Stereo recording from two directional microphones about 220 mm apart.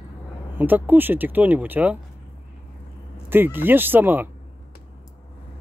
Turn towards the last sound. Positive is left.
turn(degrees=-10)  # may be behind; listen again after turning